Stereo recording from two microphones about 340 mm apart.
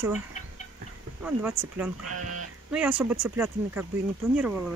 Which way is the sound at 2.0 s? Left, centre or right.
Right.